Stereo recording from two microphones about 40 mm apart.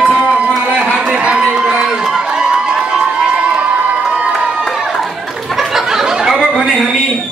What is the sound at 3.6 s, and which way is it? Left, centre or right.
Crowd, right.